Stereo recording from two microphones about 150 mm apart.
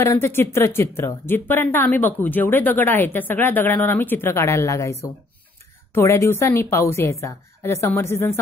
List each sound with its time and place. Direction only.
0.0 s a woman's voice: 15° left (ahead or behind)
5.9 s a woman's voice: 15° left (ahead or behind)